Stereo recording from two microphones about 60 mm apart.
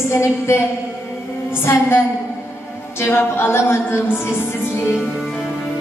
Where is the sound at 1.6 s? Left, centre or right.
Left.